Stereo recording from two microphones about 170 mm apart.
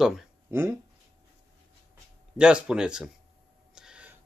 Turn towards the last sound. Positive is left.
turn(degrees=-5)  # may be behind; listen again after turning